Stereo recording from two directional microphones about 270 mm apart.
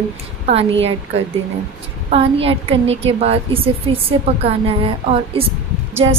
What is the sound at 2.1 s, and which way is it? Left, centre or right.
A woman's voice, right.